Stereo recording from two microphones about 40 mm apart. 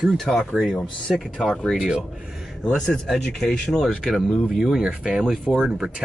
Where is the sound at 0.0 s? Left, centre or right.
Centre.